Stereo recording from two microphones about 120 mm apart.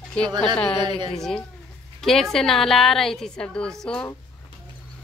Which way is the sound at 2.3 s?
5° left (ahead or behind).